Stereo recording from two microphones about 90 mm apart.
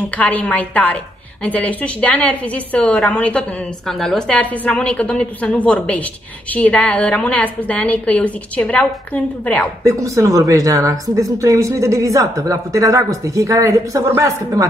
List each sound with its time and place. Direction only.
0.1 s a woman's voice: 15° left (ahead or behind)
3.8 s a woman's voice: 5° left (ahead or behind)
9.8 s speech: 35° right (ahead or behind)